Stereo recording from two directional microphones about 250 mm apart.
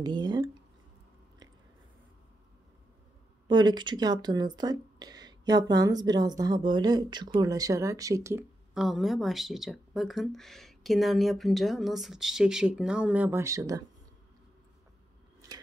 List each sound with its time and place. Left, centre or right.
0.0 s speech: centre
3.4 s a woman's voice: centre